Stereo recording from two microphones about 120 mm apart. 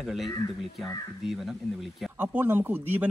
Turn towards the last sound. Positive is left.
turn(degrees=-15)  # may be behind; listen again after turning